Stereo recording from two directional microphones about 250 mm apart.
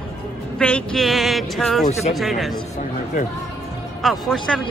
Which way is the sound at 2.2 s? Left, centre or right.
Centre.